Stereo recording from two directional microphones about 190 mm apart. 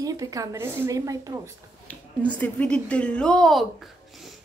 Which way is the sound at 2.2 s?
5° left (ahead or behind).